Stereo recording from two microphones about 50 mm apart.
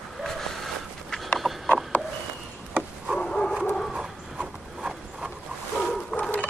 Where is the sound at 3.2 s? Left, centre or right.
Centre.